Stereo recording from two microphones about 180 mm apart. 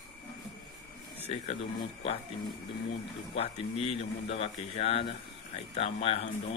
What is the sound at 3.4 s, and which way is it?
Speech, 35° left (ahead or behind).